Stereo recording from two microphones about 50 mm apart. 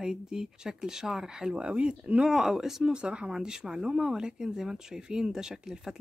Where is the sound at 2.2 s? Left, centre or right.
Centre.